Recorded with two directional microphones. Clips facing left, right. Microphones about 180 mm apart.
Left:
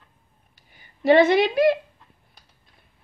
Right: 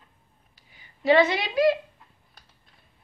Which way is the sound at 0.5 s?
55° left (ahead or behind).